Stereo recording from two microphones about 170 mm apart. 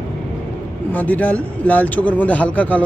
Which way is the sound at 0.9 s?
10° left (ahead or behind).